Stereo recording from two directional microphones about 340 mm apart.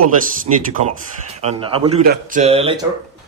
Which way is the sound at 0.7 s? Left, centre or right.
Centre.